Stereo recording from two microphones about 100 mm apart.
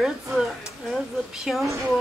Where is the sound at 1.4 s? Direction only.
Centre (ahead or behind).